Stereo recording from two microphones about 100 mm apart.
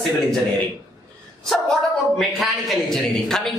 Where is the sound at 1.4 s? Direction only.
Centre (ahead or behind).